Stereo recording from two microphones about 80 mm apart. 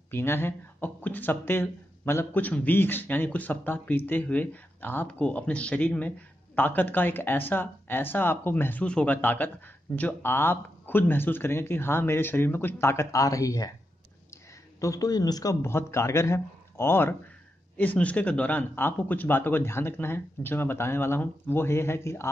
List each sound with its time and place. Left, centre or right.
0.1 s speech: left
2.4 s speech: left
14.8 s speech: left
15.6 s speech: left
17.7 s speech: centre